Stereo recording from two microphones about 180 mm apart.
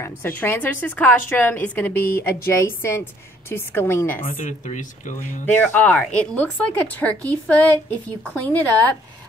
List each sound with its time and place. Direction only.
0.0 s a woman's voice: 10° left (ahead or behind)
4.2 s speech: 50° left (ahead or behind)
5.5 s a woman's voice: 10° left (ahead or behind)